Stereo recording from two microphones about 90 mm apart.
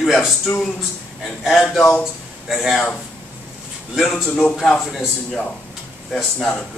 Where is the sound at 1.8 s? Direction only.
25° left (ahead or behind).